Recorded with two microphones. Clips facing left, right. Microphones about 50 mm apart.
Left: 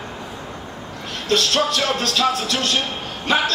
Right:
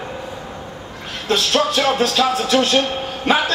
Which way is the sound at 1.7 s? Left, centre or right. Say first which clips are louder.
Right 4 dB; centre.